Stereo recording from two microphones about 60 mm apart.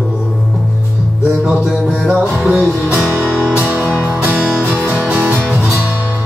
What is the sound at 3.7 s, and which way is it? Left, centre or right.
Music, right.